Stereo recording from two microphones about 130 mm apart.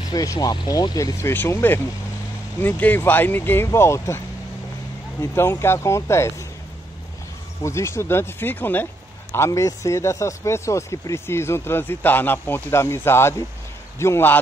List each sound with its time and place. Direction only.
0.1 s speech: 30° left (ahead or behind)
1.3 s speech: 15° left (ahead or behind)
5.2 s speech: 20° left (ahead or behind)
7.6 s speech: 20° left (ahead or behind)